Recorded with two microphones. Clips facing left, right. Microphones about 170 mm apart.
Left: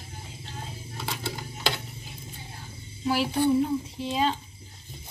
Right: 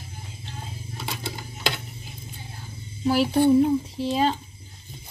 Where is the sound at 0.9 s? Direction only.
15° right (ahead or behind).